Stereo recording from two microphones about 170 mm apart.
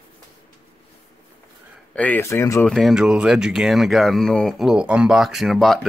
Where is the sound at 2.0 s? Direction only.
10° left (ahead or behind).